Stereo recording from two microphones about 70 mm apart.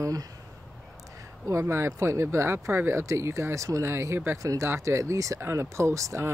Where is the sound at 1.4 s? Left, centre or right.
Right.